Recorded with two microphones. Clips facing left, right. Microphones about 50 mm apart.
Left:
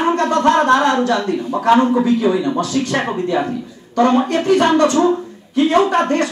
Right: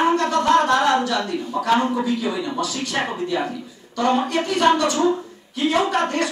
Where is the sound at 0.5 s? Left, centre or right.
Left.